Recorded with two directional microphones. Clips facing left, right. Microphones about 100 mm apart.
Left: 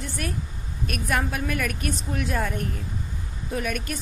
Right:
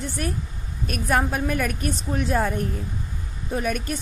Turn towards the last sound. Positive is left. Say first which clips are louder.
# right 3 dB
turn(degrees=-35)  # may be behind; listen again after turning